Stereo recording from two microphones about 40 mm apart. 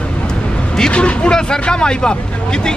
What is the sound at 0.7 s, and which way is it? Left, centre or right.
Speech, left.